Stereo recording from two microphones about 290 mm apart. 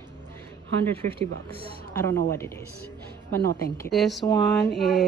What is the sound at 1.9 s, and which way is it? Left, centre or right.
Speech, centre.